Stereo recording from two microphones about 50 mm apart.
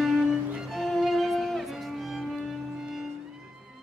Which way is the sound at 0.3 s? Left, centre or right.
Centre.